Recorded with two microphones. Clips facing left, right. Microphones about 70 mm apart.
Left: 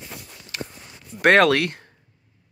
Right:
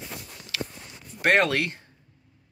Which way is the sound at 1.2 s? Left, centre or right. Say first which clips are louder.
Left 6 dB; left.